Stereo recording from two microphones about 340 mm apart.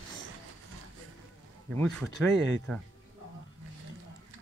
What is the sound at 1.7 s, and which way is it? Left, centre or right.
Speech, centre.